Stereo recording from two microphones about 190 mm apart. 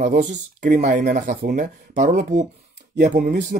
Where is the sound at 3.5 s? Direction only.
45° right (ahead or behind).